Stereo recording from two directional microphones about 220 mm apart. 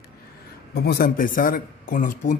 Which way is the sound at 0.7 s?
45° left (ahead or behind).